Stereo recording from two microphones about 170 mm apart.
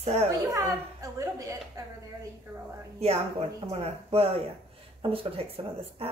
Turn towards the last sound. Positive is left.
turn(degrees=-35)  # may be behind; listen again after turning